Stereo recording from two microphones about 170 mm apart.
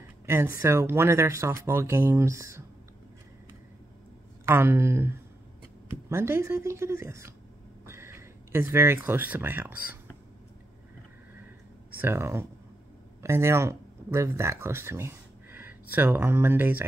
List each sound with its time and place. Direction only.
0.3 s speech: 15° right (ahead or behind)
4.5 s speech: 15° right (ahead or behind)
7.8 s a sound: 15° right (ahead or behind)
8.7 s speech: 15° right (ahead or behind)
12.0 s speech: 15° right (ahead or behind)